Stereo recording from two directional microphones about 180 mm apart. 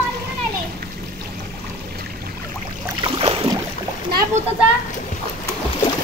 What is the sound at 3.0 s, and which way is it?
Boat, 30° right (ahead or behind).